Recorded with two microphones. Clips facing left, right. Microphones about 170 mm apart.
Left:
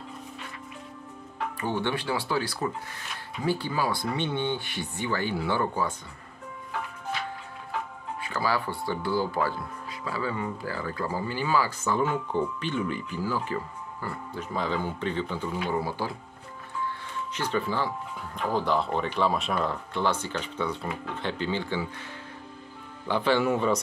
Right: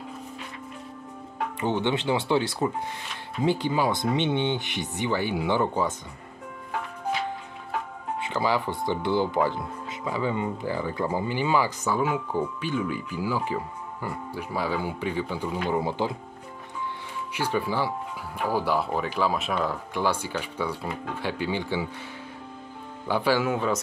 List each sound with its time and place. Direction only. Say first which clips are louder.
1.6 s speech: right 4 dB; 20° right (ahead or behind)
8.2 s speech: right 2 dB; 20° right (ahead or behind)
16.8 s music: left 1 dB; 10° right (ahead or behind)
18.5 s speech: even; 5° right (ahead or behind)
23.0 s speech: even; 10° right (ahead or behind)